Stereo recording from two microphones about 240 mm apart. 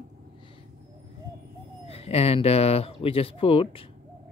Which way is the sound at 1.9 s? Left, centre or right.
Left.